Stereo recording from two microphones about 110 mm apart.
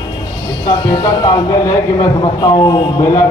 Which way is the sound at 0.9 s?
35° left (ahead or behind).